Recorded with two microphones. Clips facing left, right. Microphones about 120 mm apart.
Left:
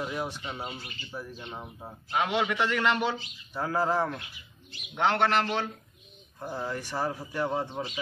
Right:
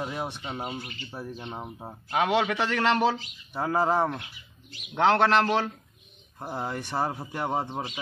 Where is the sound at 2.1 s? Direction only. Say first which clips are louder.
Right 3 dB; 90° right.